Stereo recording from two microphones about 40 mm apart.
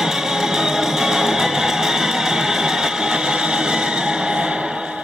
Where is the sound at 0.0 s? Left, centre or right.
Centre.